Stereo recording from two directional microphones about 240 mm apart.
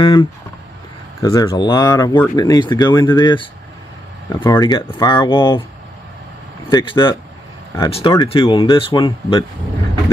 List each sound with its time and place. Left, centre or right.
0.0 s speech: centre
6.7 s speech: left